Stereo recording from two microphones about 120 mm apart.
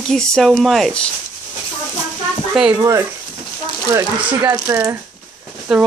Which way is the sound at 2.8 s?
20° right (ahead or behind).